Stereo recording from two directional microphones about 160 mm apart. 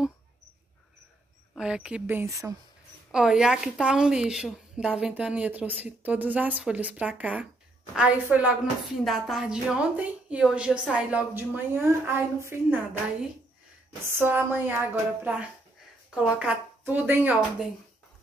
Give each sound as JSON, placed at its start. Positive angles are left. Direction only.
{"t": 1.5, "sound": "a woman's voice", "side_deg": -5}
{"t": 3.1, "sound": "a woman's voice", "side_deg": -5}
{"t": 14.0, "sound": "a woman's voice", "side_deg": -15}